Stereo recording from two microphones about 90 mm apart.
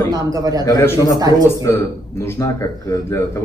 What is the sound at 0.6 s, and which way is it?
A man's voice, 35° left (ahead or behind).